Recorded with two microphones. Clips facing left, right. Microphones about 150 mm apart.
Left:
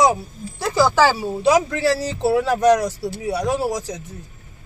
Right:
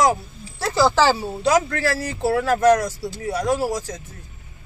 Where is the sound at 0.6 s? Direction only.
15° left (ahead or behind).